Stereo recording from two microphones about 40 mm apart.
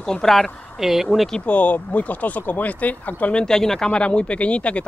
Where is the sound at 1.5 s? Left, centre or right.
Left.